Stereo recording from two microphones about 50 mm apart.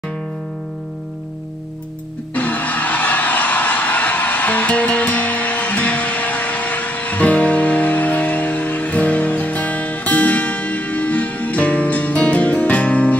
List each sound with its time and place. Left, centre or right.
2.3 s music: left